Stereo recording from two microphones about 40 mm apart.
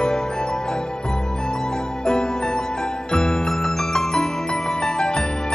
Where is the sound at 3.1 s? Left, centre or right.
Centre.